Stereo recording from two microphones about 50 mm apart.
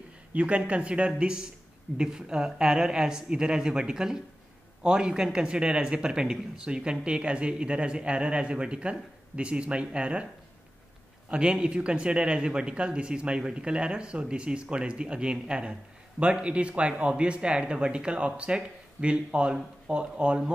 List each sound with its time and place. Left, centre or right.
0.3 s speech: right
11.2 s speech: right